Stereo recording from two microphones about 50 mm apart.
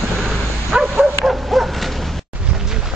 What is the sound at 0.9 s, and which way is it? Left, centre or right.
Bow-wow, centre.